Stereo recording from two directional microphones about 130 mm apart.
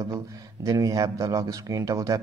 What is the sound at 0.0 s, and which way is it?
Speech, 25° right (ahead or behind).